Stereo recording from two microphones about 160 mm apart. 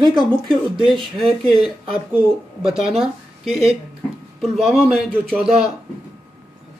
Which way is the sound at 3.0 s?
Centre (ahead or behind).